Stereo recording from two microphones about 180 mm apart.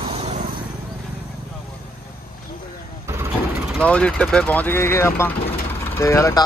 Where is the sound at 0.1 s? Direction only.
35° right (ahead or behind).